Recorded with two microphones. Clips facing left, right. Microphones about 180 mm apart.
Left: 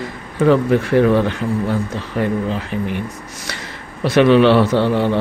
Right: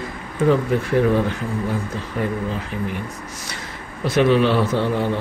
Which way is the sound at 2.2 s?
70° left (ahead or behind).